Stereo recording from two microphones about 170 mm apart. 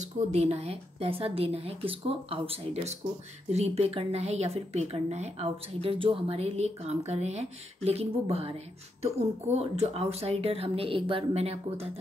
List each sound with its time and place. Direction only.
0.0 s a woman's voice: 40° right (ahead or behind)